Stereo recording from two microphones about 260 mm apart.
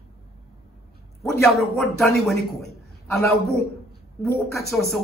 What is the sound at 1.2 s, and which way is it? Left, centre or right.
A man's voice, centre.